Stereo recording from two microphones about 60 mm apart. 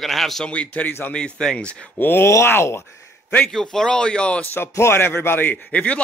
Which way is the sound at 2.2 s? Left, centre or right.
Left.